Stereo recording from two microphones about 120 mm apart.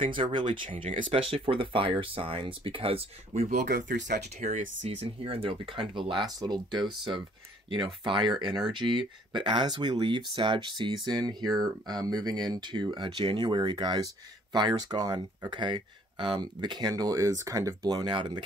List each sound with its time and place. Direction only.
0.0 s speech: 45° right (ahead or behind)